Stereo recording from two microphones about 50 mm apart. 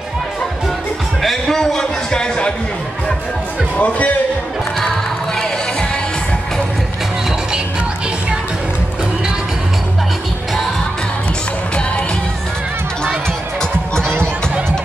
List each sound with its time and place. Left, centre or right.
1.2 s a man's voice: centre
3.7 s speech: left